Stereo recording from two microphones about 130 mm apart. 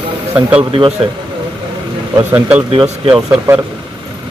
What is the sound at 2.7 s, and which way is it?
Speech, 45° right (ahead or behind).